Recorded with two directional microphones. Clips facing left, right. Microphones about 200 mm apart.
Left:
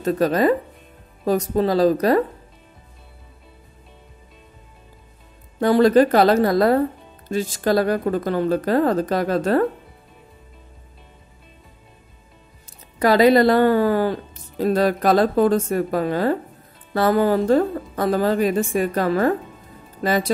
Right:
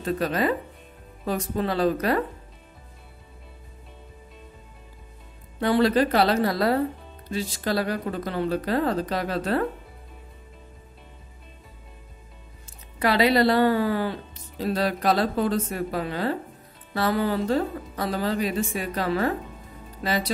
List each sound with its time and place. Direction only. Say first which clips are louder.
0.0 s a woman's voice: left 7 dB; 40° left (ahead or behind)
5.6 s a woman's voice: left 6 dB; 45° left (ahead or behind)
13.0 s a woman's voice: left 6 dB; 45° left (ahead or behind)